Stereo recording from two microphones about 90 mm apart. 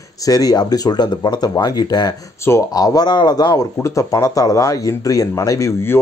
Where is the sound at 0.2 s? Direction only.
45° left (ahead or behind).